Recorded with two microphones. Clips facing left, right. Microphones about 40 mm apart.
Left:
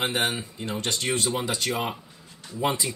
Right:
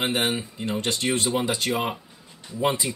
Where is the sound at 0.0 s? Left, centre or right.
Centre.